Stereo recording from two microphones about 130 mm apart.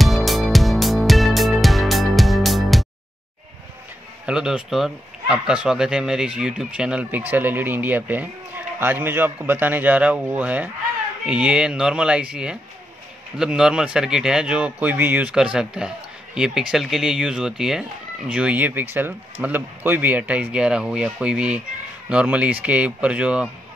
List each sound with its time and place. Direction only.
0.0 s music: centre (ahead or behind)
4.3 s speech: 5° right (ahead or behind)